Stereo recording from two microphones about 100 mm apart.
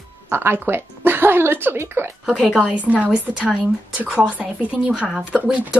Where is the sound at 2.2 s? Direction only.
5° right (ahead or behind).